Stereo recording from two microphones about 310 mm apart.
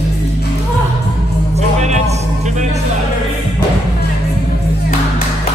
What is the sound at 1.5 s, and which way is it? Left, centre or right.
Music, right.